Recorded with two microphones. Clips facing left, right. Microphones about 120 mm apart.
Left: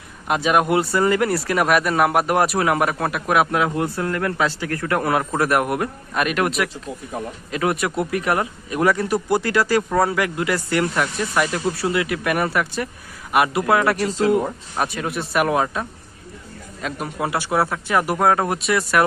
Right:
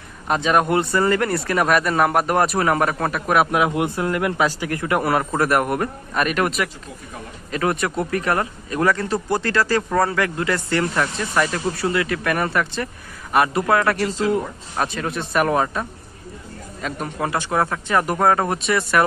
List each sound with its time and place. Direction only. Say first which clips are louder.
0.3 s speech: even; 5° left (ahead or behind)
3.6 s speech: right 1 dB; 15° right (ahead or behind); by 19.0 s centre (ahead or behind)